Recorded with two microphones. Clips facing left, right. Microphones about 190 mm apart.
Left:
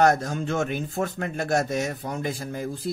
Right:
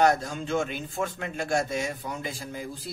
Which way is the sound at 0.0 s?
45° left (ahead or behind).